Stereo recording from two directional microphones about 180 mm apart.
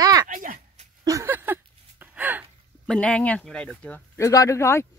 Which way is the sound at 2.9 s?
5° left (ahead or behind).